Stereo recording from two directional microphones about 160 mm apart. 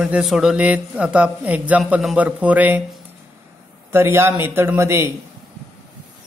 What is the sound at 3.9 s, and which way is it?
Speech, 15° right (ahead or behind).